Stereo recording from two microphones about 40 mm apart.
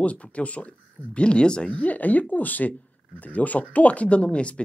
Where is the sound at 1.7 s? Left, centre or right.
Left.